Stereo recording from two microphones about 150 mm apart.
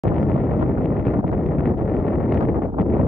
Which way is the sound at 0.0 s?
5° left (ahead or behind).